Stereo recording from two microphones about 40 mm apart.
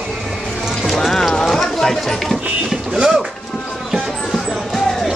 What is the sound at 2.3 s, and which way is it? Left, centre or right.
Speech, centre.